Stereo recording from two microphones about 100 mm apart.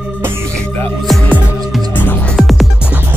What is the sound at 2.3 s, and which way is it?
Music, centre (ahead or behind).